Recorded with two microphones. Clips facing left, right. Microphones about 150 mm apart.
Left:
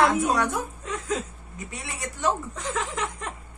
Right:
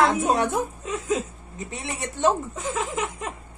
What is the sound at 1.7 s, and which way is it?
Speech, 25° right (ahead or behind).